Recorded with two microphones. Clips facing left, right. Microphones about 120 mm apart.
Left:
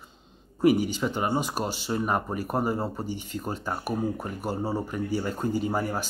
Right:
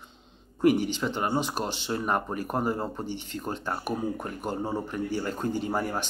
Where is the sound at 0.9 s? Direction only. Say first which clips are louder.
Left 1 dB; 10° left (ahead or behind).